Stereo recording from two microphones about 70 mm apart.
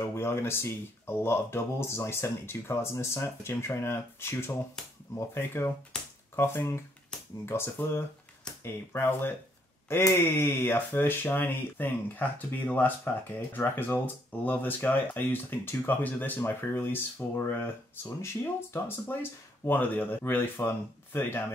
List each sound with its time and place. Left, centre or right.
0.0 s speech: left